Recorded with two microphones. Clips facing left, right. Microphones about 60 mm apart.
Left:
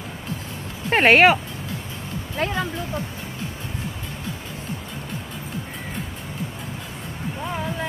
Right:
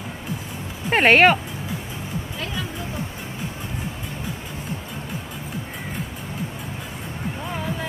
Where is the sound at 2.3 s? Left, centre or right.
Left.